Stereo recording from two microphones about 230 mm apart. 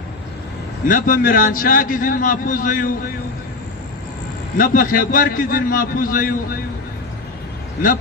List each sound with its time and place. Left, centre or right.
0.8 s a man's voice: left
4.6 s a man's voice: left